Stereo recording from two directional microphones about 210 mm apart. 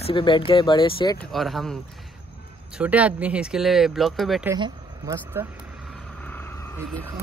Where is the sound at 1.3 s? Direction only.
Centre (ahead or behind).